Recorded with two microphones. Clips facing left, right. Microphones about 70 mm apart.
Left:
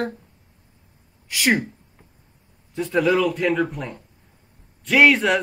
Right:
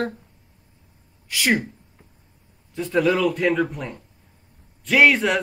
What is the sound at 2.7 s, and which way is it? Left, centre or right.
A man's voice, centre.